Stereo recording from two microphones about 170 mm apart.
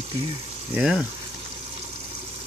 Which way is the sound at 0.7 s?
5° right (ahead or behind).